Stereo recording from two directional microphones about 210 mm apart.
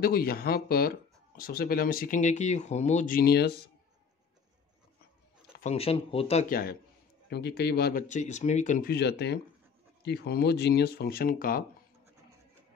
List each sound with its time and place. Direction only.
0.0 s speech: 45° left (ahead or behind)
5.6 s speech: 30° left (ahead or behind)
6.5 s speech: 45° left (ahead or behind)